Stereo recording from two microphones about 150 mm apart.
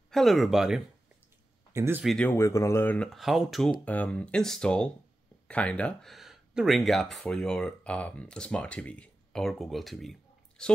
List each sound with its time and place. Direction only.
0.1 s speech: centre (ahead or behind)
1.7 s speech: 15° right (ahead or behind)
2.0 s speech: 5° left (ahead or behind)
2.3 s speech: 20° left (ahead or behind)
3.1 s speech: centre (ahead or behind)